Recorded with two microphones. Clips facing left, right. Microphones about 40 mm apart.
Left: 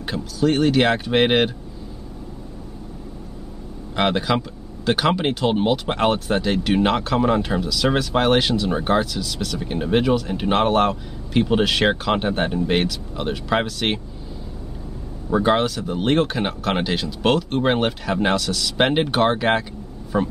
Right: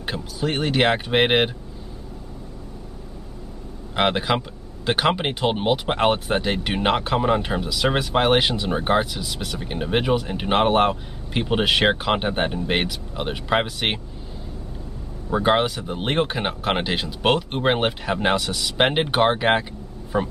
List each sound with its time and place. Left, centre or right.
0.0 s speech: centre
3.9 s speech: centre
15.3 s speech: centre